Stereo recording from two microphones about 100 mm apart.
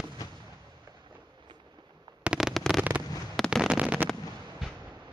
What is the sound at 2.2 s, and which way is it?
Fireworks, 10° right (ahead or behind).